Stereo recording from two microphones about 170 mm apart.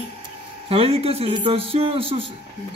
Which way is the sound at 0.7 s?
35° right (ahead or behind).